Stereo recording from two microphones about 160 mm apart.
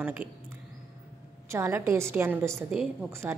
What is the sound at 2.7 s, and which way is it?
Speech, 5° right (ahead or behind).